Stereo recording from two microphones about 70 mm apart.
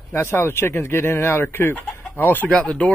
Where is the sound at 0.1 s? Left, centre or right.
Left.